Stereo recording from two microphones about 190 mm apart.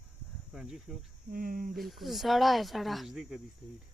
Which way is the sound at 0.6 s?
Centre (ahead or behind).